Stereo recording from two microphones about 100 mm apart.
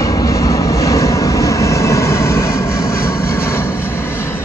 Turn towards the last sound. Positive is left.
turn(degrees=25)  # may be behind; listen again after turning